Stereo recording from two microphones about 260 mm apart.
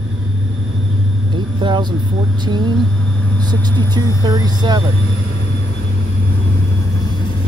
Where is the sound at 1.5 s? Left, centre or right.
Centre.